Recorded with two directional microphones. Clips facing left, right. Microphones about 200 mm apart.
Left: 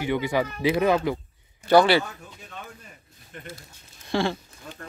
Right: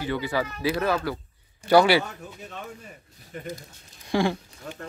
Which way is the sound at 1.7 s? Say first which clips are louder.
Even; 10° right (ahead or behind).